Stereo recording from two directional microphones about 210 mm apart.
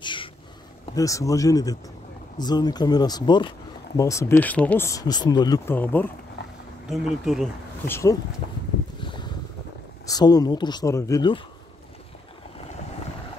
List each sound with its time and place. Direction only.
0.0 s a sound: 25° left (ahead or behind)
0.9 s speech: 15° left (ahead or behind)
5.8 s speech: 10° left (ahead or behind)
6.9 s speech: centre (ahead or behind)
7.8 s speech: 10° left (ahead or behind)
9.0 s boat: 20° left (ahead or behind)
10.0 s speech: 20° left (ahead or behind)